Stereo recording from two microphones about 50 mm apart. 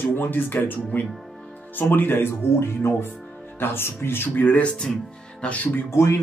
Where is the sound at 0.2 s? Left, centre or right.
Left.